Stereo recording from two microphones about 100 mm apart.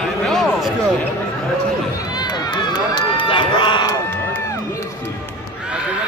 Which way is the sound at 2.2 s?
50° left (ahead or behind).